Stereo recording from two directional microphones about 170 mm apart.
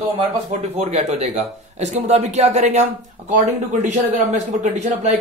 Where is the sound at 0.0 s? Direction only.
40° right (ahead or behind).